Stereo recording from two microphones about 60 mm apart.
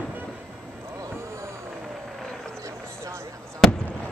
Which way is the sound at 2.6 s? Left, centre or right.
Right.